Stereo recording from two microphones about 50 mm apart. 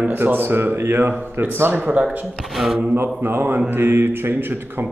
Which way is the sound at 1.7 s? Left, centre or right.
Right.